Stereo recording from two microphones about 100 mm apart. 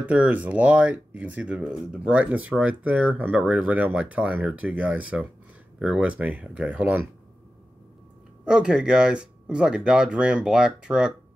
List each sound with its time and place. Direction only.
0.0 s speech: 15° right (ahead or behind)
8.5 s speech: 10° right (ahead or behind)